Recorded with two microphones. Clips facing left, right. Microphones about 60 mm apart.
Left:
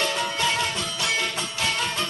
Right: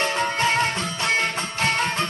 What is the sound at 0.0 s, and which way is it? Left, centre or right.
Music, right.